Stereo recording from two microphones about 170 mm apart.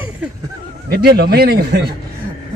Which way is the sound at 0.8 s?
65° right (ahead or behind).